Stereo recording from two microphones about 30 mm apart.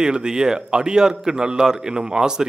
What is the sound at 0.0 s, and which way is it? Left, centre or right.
A man's voice, right.